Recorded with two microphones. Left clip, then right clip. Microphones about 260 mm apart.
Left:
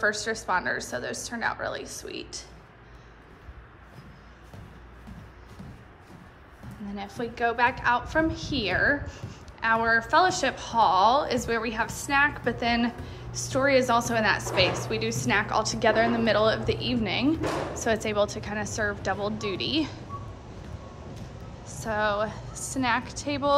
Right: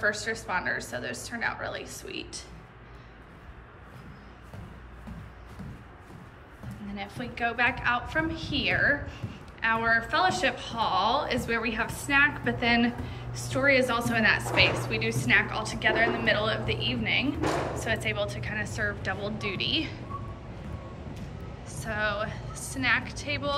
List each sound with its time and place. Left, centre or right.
0.0 s a woman's voice: centre
7.0 s a woman's voice: centre
21.6 s a woman's voice: centre